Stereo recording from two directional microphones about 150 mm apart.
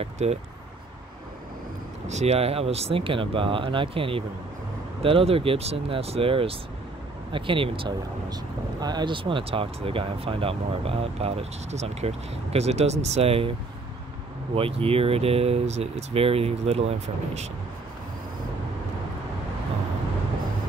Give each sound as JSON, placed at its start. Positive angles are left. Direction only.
{"t": 0.0, "sound": "speech", "side_deg": -45}
{"t": 2.0, "sound": "speech", "side_deg": -45}